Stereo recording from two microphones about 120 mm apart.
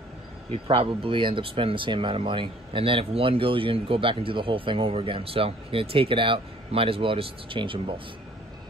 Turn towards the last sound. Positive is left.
turn(degrees=-45)  # may be behind; listen again after turning